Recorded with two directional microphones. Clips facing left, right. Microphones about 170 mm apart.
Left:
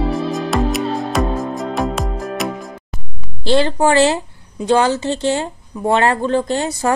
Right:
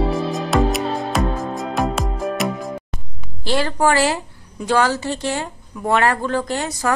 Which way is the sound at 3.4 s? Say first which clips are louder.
Left 4 dB; 25° left (ahead or behind).